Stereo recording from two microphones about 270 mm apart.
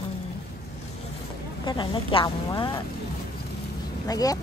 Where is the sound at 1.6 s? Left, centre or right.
Centre.